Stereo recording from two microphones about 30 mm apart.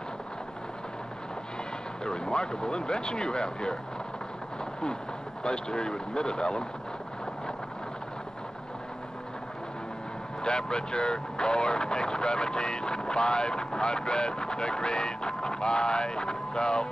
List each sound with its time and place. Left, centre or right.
2.0 s speech: left
5.4 s speech: left
10.4 s speech: left